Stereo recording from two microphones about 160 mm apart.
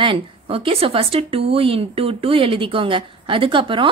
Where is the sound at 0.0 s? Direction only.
35° right (ahead or behind).